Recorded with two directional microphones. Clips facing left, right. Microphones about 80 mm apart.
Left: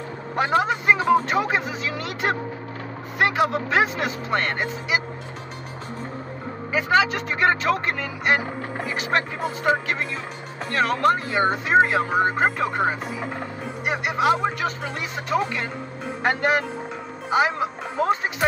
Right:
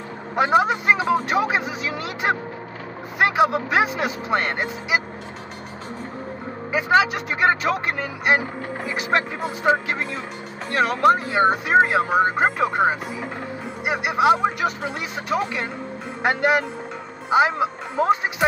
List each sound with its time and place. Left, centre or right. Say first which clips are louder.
0.4 s speech: right 3 dB; centre
6.7 s speech: right 2 dB; centre